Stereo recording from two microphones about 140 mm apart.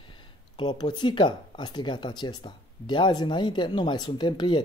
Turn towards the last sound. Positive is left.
turn(degrees=30)  # may be behind; listen again after turning